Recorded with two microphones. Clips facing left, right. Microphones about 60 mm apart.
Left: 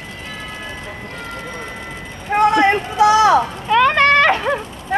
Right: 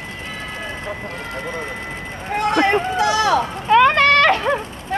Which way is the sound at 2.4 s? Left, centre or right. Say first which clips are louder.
Left 3 dB; left.